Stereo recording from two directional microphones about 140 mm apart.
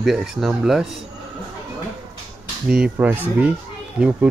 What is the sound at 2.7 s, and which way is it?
Speech, 10° right (ahead or behind).